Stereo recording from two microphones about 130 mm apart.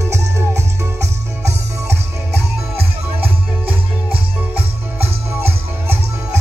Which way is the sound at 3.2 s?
45° right (ahead or behind).